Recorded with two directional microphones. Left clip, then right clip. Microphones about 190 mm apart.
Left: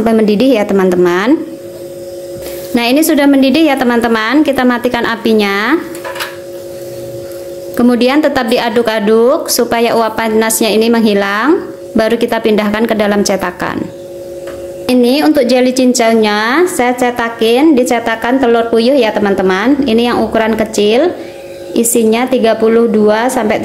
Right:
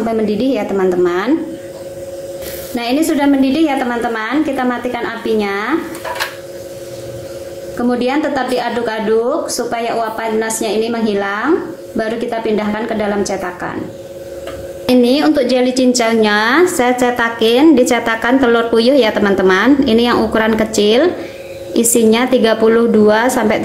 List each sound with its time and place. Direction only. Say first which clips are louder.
0.1 s a woman's voice: left 6 dB; 40° left (ahead or behind)
2.7 s a woman's voice: left 5 dB; 45° left (ahead or behind)
7.7 s a woman's voice: left 6 dB; 45° left (ahead or behind)
14.9 s a woman's voice: left 2 dB; 15° left (ahead or behind)